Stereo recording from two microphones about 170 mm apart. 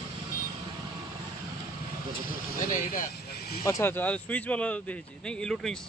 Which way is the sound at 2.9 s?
55° left (ahead or behind).